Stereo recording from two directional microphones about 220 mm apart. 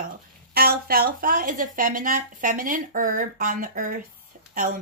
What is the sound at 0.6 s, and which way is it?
Speech, 45° right (ahead or behind).